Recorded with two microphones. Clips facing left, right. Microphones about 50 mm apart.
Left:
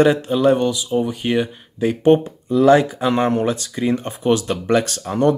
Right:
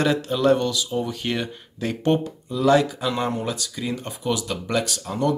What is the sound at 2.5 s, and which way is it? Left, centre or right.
Speech, left.